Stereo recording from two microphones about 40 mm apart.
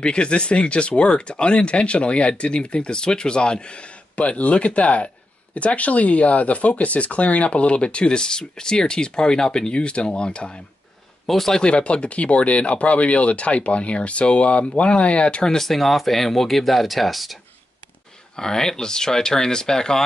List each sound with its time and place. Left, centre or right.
0.0 s speech: left
11.2 s speech: centre
11.6 s speech: left
15.5 s speech: centre
18.3 s speech: centre